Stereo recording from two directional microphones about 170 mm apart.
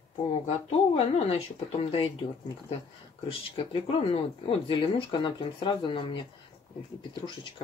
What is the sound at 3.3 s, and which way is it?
Speech, 35° left (ahead or behind).